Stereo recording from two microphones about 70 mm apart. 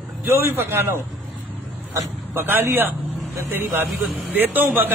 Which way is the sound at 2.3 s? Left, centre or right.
Right.